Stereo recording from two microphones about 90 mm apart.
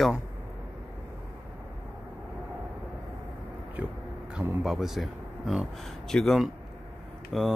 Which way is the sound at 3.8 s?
15° right (ahead or behind).